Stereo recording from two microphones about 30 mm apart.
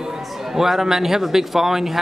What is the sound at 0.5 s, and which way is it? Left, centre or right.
Speech, centre.